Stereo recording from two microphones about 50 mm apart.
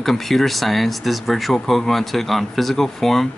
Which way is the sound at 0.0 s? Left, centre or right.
Centre.